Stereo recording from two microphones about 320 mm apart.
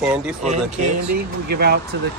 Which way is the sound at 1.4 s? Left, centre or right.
Right.